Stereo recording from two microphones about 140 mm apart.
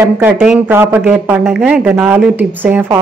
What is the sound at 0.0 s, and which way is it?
Speech, 15° right (ahead or behind).